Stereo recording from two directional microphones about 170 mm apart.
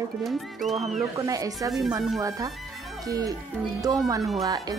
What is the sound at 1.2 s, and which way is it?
Speech, 20° right (ahead or behind).